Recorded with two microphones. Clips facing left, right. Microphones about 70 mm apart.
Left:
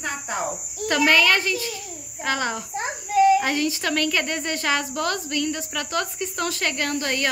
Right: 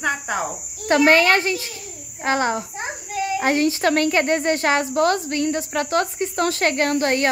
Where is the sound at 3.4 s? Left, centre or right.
Right.